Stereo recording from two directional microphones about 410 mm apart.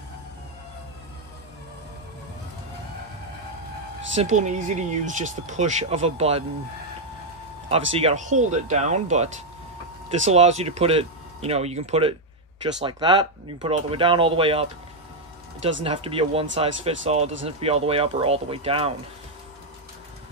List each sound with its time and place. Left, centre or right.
4.1 s speech: centre
7.9 s speech: centre
15.8 s speech: centre